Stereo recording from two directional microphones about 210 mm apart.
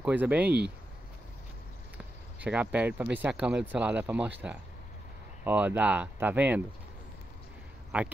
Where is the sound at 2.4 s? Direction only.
5° right (ahead or behind).